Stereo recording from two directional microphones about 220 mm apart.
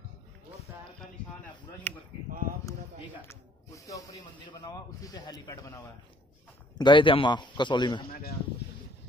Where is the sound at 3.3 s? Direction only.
15° left (ahead or behind).